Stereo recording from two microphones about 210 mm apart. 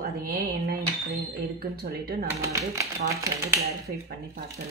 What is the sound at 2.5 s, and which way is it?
Speech, 15° right (ahead or behind).